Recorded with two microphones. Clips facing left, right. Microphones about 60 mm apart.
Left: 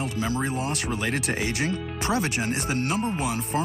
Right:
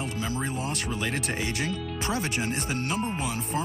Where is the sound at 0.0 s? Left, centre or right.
Left.